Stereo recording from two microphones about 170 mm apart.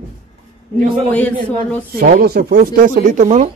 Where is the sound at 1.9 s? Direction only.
60° right (ahead or behind).